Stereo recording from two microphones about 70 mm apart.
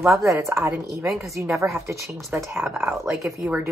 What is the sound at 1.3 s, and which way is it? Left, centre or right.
Speech, right.